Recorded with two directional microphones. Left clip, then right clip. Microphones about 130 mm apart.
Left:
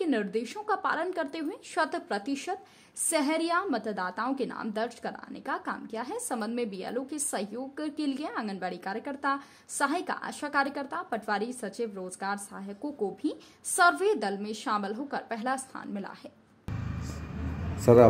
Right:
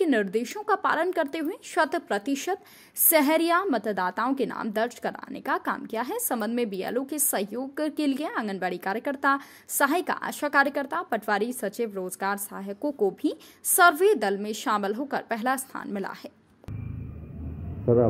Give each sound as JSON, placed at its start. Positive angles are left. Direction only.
{"t": 0.0, "sound": "a woman's voice", "side_deg": -35}
{"t": 17.9, "sound": "speech", "side_deg": 45}